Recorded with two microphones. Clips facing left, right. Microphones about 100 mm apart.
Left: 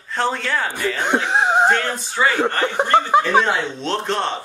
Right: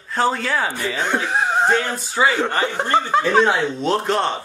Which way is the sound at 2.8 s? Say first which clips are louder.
Left 3 dB; 15° left (ahead or behind).